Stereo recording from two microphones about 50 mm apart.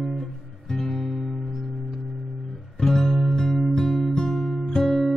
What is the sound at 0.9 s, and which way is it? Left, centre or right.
Music, centre.